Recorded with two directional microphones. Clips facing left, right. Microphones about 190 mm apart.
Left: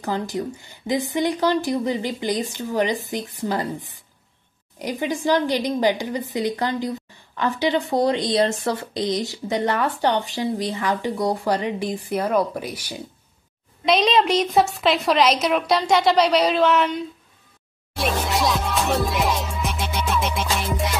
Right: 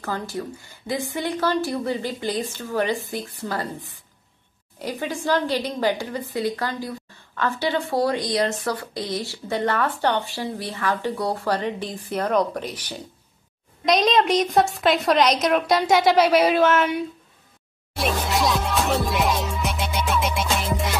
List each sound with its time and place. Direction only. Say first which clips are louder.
0.0 s a woman's voice: left 3 dB; 20° left (ahead or behind)
4.7 s a woman's voice: left 3 dB; 15° left (ahead or behind); by 17.0 s 5° right (ahead or behind)
17.9 s music: even; centre (ahead or behind)